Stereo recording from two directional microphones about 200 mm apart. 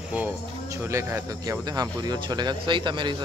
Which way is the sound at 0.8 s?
15° right (ahead or behind).